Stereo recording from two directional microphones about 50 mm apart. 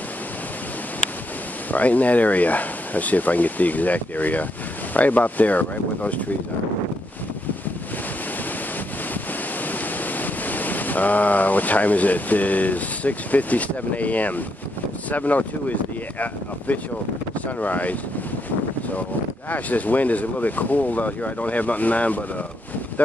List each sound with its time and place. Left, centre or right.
1.7 s speech: left
9.7 s a sound: left
15.0 s speech: left
19.5 s speech: left